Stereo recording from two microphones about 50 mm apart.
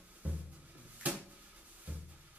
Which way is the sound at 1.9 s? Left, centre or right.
Right.